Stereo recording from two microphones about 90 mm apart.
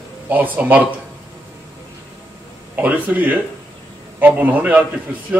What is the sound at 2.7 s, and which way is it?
A man's voice, 20° right (ahead or behind).